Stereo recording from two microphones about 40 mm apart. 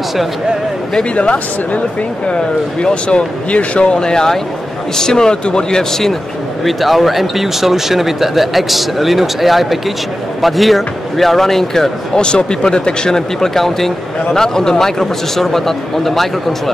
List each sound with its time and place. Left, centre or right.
2.2 s speech: left
6.6 s speech: centre
12.2 s speech: left; by 16.7 s centre